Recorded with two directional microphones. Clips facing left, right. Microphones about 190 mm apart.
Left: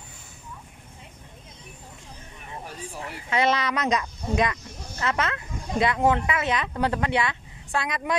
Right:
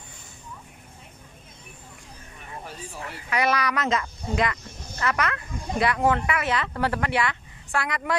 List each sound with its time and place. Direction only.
3.0 s speech: 25° left (ahead or behind)